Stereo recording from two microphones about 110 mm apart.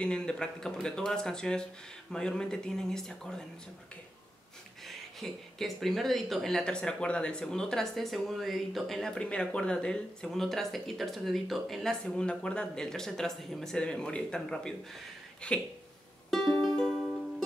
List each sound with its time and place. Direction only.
0.0 s speech: 5° left (ahead or behind)
4.8 s speech: centre (ahead or behind)
16.3 s music: centre (ahead or behind)